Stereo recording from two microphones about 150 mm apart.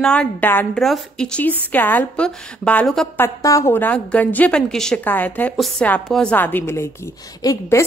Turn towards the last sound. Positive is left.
turn(degrees=25)  # may be behind; listen again after turning